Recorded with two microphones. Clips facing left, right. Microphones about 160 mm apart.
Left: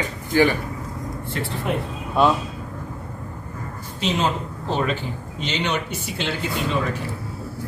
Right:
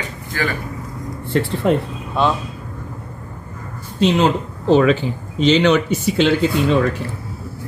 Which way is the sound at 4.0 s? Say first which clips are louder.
Right 7 dB; 80° right.